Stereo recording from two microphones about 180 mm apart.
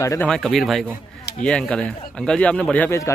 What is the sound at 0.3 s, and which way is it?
Speech, centre (ahead or behind).